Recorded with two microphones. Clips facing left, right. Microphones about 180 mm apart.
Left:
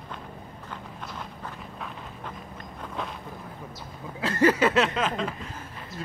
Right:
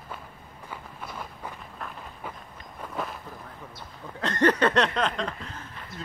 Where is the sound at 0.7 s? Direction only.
5° right (ahead or behind).